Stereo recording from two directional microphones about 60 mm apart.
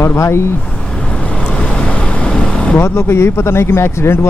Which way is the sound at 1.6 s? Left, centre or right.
Centre.